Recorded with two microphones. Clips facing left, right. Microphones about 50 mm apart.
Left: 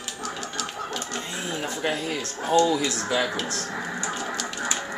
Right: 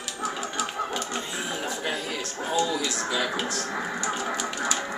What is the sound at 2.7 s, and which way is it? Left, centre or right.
Speech, left.